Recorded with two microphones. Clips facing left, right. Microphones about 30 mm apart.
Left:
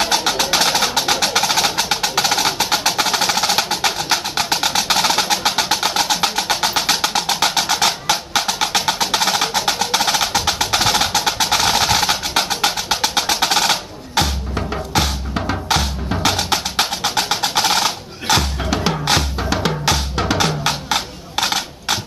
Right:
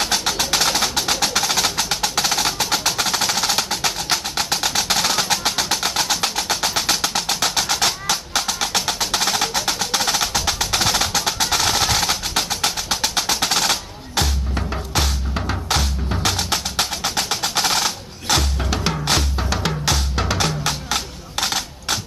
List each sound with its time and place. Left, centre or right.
0.0 s music: centre